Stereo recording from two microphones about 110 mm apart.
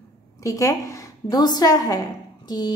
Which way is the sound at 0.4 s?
30° left (ahead or behind).